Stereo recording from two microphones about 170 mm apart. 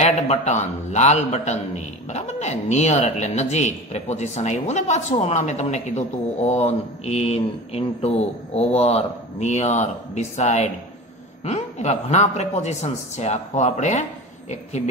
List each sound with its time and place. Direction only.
0.0 s a man's voice: 40° left (ahead or behind)